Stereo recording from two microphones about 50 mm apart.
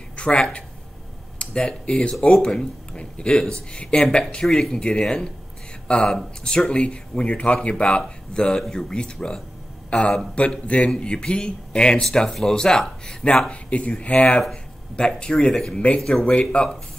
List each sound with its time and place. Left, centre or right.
0.1 s a man's voice: left
13.5 s speech: left
15.7 s speech: left